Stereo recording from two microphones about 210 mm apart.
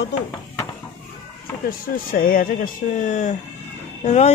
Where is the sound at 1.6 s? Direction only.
45° left (ahead or behind).